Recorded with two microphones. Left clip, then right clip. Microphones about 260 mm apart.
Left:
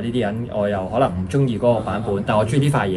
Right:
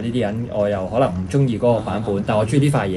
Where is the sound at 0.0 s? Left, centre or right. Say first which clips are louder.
Even; left.